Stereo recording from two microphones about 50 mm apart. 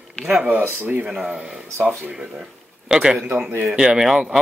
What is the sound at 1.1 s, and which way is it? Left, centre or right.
Speech, centre.